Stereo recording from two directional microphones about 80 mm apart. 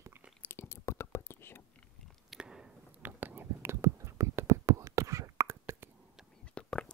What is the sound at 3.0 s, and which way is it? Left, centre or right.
Whispering, right.